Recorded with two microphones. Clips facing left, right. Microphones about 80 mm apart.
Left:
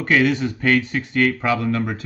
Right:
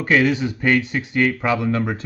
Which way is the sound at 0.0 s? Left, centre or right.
Centre.